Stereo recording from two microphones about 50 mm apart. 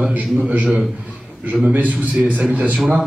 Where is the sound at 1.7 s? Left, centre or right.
Right.